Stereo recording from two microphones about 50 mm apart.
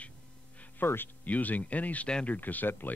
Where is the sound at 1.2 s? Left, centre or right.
Left.